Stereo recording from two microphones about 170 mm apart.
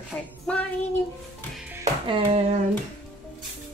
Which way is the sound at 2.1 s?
30° right (ahead or behind).